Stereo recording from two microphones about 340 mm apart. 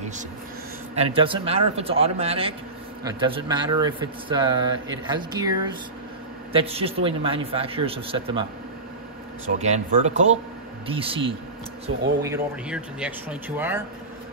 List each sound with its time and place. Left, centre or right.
0.9 s speech: centre
9.6 s speech: centre